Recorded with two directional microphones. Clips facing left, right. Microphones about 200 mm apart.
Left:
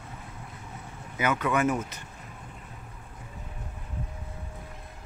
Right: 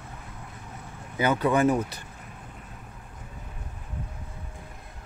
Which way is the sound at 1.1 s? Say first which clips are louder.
Right 3 dB; 35° right (ahead or behind).